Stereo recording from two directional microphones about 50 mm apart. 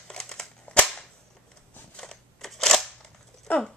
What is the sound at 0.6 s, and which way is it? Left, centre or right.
Cap gun, left.